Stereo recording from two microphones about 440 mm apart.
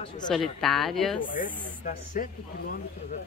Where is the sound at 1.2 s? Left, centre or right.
Centre.